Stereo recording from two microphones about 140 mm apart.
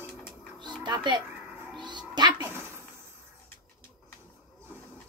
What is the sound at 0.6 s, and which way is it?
Music, 30° right (ahead or behind).